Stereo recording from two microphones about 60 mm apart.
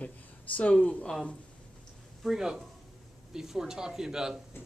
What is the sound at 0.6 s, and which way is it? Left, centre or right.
Speech, left.